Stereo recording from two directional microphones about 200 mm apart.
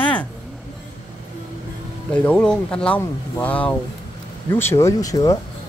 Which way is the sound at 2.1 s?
5° left (ahead or behind).